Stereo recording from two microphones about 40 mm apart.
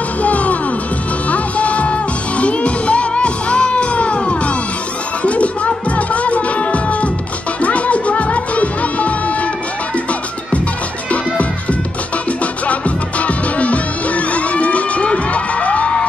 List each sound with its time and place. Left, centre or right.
0.2 s music: left
12.6 s music: left